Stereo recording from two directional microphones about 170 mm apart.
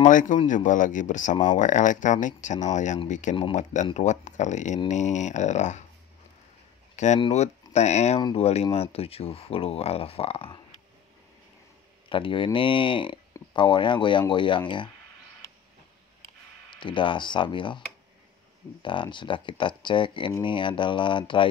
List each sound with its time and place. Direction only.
0.0 s speech: 50° left (ahead or behind)
7.0 s speech: 45° left (ahead or behind)
8.2 s speech: 25° left (ahead or behind)
12.1 s speech: 30° left (ahead or behind)
16.7 s speech: 30° left (ahead or behind)